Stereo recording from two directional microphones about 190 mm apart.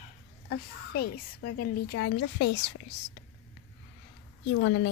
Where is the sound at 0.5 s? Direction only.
55° left (ahead or behind).